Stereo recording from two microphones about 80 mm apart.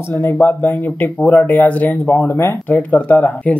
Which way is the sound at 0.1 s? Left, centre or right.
Left.